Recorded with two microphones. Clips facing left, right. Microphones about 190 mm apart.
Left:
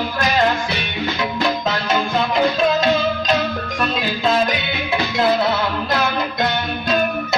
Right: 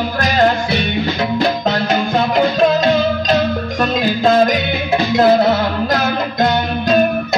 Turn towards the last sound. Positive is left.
turn(degrees=-45)  # may be behind; listen again after turning